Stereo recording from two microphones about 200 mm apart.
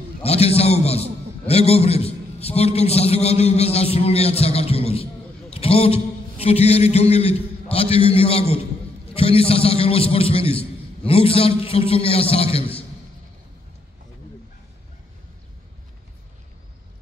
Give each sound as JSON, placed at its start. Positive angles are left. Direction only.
{"t": 0.2, "sound": "a man's voice", "side_deg": 30}
{"t": 5.5, "sound": "a sound", "side_deg": 30}
{"t": 6.4, "sound": "a man's voice", "side_deg": 30}